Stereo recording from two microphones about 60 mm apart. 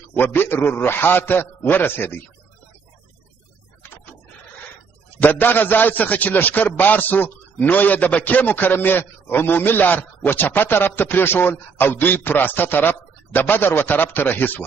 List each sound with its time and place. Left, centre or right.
0.1 s a man's voice: left
5.2 s a man's voice: left